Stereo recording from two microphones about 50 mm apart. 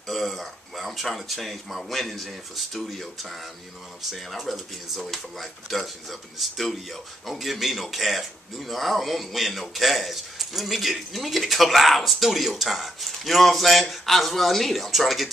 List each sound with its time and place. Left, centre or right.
0.1 s speech: centre